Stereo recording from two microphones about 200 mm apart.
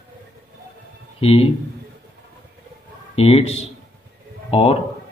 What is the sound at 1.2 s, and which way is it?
Speech, 30° left (ahead or behind).